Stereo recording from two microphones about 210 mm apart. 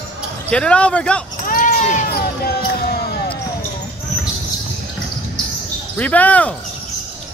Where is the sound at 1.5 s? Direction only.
40° left (ahead or behind).